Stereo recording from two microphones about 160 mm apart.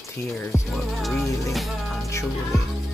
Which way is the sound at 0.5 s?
15° left (ahead or behind).